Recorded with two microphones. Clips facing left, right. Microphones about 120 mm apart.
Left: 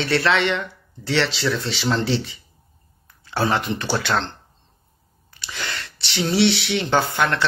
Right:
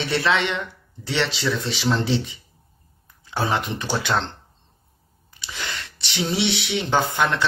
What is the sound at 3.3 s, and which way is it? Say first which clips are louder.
Speech: left 2 dB; 15° right (ahead or behind).